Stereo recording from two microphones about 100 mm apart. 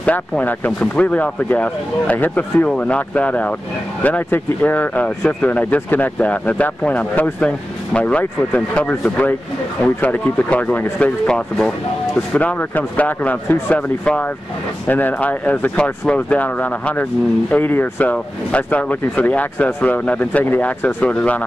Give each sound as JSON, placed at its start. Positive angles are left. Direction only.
{"t": 0.0, "sound": "speech", "side_deg": 15}